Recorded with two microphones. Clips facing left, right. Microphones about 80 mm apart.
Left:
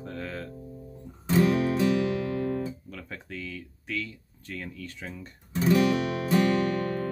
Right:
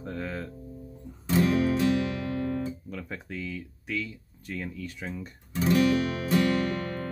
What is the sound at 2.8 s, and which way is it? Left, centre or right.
Speech, centre.